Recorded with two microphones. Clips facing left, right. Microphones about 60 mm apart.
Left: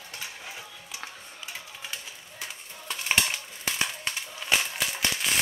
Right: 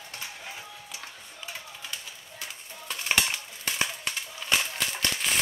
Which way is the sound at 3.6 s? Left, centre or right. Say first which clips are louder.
Even; centre.